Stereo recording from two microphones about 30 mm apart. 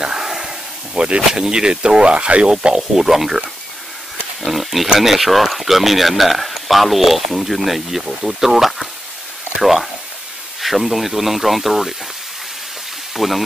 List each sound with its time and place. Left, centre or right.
0.1 s a sound: right
0.9 s speech: right
1.3 s speech: right
2.5 s speech: right
3.0 s speech: centre
4.5 s a sound: centre
4.9 s speech: centre
13.1 s speech: centre